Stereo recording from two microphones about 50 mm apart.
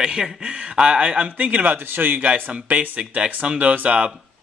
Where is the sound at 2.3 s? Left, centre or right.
Right.